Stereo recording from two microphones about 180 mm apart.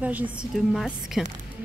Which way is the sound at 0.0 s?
10° right (ahead or behind).